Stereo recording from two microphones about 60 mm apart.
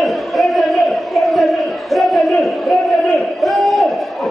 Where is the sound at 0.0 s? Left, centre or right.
Centre.